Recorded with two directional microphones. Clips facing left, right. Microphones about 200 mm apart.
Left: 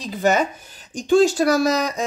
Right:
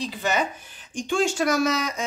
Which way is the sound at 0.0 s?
45° left (ahead or behind).